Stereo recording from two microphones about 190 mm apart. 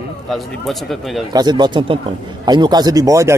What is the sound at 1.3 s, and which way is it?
Speech, 20° right (ahead or behind).